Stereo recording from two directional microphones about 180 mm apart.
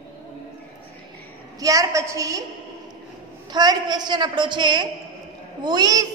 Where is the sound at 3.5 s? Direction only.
25° right (ahead or behind).